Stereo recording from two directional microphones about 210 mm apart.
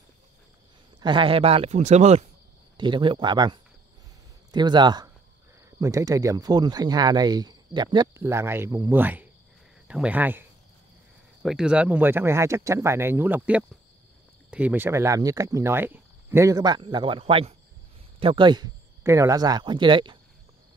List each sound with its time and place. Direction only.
1.0 s speech: 25° right (ahead or behind); by 10.4 s 10° right (ahead or behind)
11.4 s speech: 5° right (ahead or behind); by 20.2 s 20° right (ahead or behind)